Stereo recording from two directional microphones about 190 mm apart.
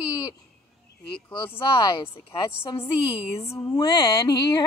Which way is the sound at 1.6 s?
25° left (ahead or behind).